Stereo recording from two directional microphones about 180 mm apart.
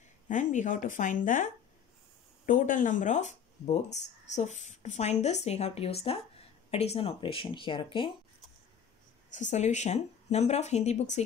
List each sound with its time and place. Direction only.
0.3 s a woman's voice: 45° left (ahead or behind); by 8.1 s 30° left (ahead or behind)
9.3 s a woman's voice: 40° left (ahead or behind)